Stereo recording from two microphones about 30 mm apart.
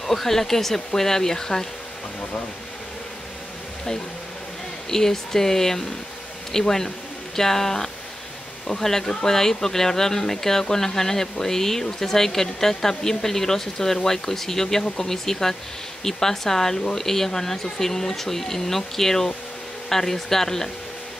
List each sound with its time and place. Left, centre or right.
0.0 s speech: centre
4.8 s speech: centre